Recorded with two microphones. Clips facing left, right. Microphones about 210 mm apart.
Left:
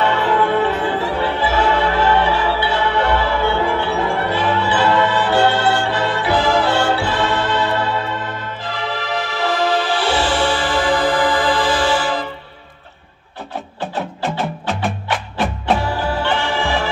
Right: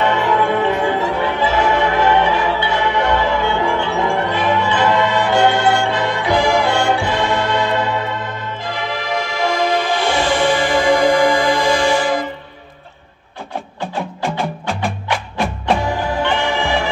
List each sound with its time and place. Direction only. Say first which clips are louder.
0.0 s music: even; 15° right (ahead or behind)
10.1 s music: right 4 dB; 15° right (ahead or behind)
14.4 s music: even; 5° left (ahead or behind)
15.8 s music: right 1 dB; 20° right (ahead or behind)